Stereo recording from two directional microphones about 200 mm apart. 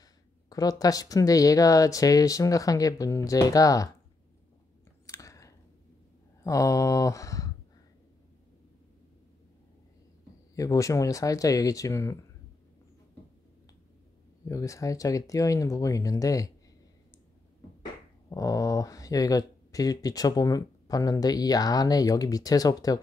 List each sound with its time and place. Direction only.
0.5 s speech: 20° left (ahead or behind)
5.0 s chewing: 15° left (ahead or behind)
6.4 s speech: 15° left (ahead or behind)
10.5 s speech: 15° left (ahead or behind)
14.4 s speech: 15° left (ahead or behind)
18.3 s speech: 15° left (ahead or behind)